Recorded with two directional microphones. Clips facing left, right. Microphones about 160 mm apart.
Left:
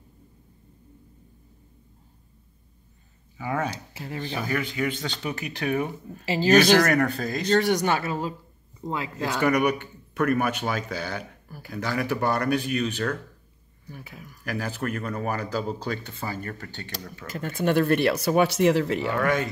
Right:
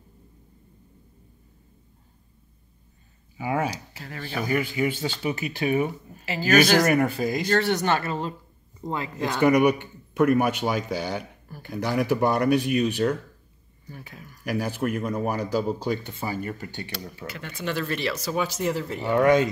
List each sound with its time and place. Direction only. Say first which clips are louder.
3.3 s speech: right 2 dB; 10° right (ahead or behind)
3.7 s speech: left 3 dB; 25° left (ahead or behind)
4.5 s speech: right 4 dB; 10° right (ahead or behind)
7.4 s speech: left 3 dB; 15° left (ahead or behind)
9.4 s speech: right 4 dB; 10° right (ahead or behind)
11.4 s speech: right 1 dB; 5° left (ahead or behind)
11.7 s speech: right 3 dB; 15° right (ahead or behind)
13.8 s speech: even; 5° left (ahead or behind)
14.4 s speech: right 3 dB; 10° right (ahead or behind)
17.3 s speech: left 7 dB; 50° left (ahead or behind); by 19.0 s 90° left
19.1 s speech: right 9 dB; 20° right (ahead or behind)